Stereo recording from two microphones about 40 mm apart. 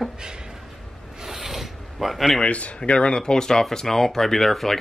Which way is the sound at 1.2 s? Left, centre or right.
Centre.